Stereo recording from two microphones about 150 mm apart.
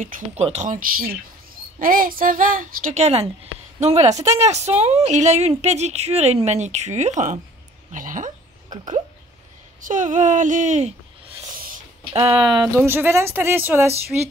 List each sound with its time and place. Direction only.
0.0 s speech: 50° right (ahead or behind)
9.8 s speech: 60° right (ahead or behind)
11.5 s a sound: 70° right (ahead or behind)
12.1 s speech: 35° right (ahead or behind)
12.8 s speech: 15° right (ahead or behind)